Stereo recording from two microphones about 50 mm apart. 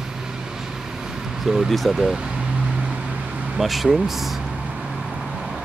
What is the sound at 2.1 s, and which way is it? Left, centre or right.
Vehicle, centre.